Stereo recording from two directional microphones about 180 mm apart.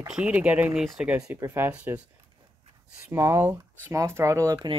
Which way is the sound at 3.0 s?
15° right (ahead or behind).